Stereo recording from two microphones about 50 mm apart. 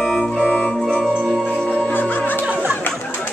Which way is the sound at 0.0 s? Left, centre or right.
Centre.